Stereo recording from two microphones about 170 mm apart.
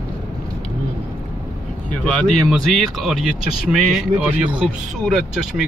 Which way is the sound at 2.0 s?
5° left (ahead or behind).